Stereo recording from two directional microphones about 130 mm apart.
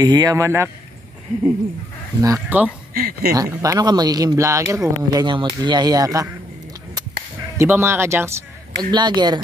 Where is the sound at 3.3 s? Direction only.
25° right (ahead or behind).